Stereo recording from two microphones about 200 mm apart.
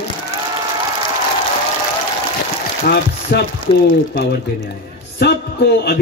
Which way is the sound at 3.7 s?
25° left (ahead or behind).